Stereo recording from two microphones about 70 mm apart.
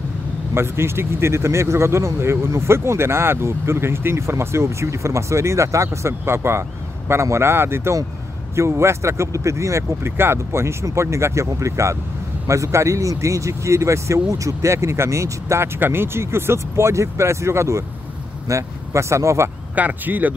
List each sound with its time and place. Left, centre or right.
0.6 s a man's voice: right
15.8 s speech: right
19.7 s speech: right